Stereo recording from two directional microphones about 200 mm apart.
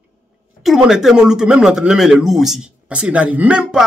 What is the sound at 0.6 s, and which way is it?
Speech, centre (ahead or behind).